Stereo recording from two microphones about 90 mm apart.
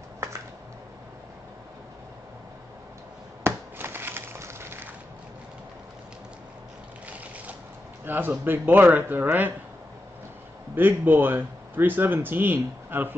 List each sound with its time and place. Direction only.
0.2 s a sound: 35° right (ahead or behind)
3.4 s crushing: 25° right (ahead or behind)
8.0 s speech: 20° right (ahead or behind)
10.7 s speech: 20° right (ahead or behind)